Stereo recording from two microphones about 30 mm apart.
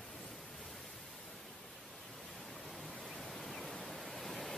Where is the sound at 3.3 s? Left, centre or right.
Centre.